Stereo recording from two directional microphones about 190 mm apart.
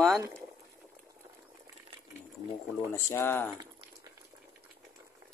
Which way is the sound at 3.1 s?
10° left (ahead or behind).